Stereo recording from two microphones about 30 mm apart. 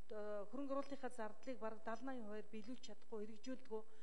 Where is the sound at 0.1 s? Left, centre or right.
Centre.